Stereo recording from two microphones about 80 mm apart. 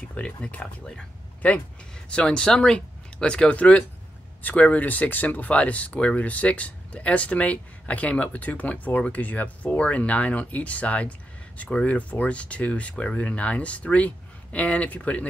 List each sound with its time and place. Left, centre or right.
0.0 s speech: centre